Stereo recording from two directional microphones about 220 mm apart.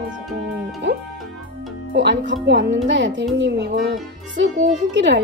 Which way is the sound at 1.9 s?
50° right (ahead or behind).